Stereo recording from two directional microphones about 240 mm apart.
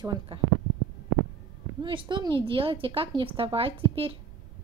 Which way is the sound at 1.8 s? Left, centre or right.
Centre.